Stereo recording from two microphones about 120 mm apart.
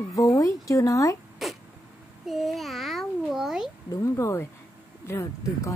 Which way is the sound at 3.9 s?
25° left (ahead or behind).